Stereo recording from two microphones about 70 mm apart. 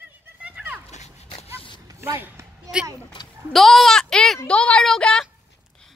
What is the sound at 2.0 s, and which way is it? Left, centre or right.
Speech, right.